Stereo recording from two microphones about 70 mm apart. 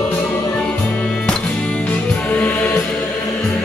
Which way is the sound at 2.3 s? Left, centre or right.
Left.